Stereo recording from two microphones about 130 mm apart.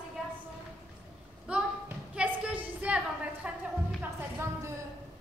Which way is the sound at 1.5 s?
5° right (ahead or behind).